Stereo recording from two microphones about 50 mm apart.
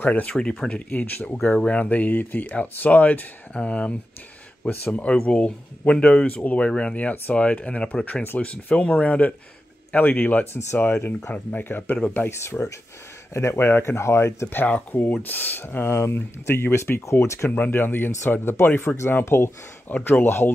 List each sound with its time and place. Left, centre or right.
0.0 s speech: left
0.3 s speech: centre; by 10.4 s left
10.4 s speech: left
13.3 s speech: left
13.6 s speech: left
14.7 s speech: left
15.9 s speech: left
16.2 s speech: left
17.6 s speech: left
18.9 s speech: centre
19.2 s speech: left